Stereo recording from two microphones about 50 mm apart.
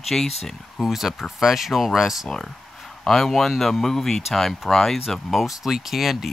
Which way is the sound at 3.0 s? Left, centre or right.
Centre.